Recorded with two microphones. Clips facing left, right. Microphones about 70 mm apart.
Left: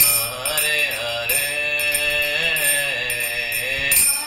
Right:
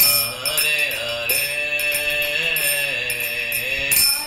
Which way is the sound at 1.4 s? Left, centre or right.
Left.